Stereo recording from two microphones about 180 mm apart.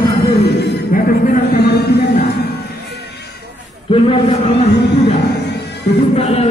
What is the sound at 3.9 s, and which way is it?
Speech, 35° left (ahead or behind).